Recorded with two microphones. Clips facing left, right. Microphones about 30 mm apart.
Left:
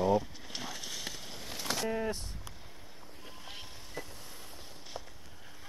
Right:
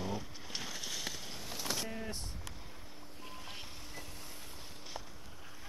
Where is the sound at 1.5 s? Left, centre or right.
Left.